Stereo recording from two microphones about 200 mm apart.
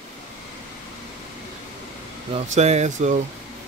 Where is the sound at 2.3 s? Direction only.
35° right (ahead or behind).